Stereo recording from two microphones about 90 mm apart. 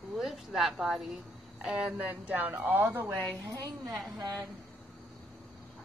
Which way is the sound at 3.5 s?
40° right (ahead or behind).